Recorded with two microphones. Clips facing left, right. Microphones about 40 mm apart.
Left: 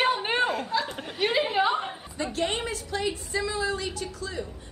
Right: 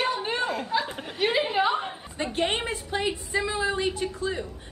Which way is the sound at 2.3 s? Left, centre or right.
Right.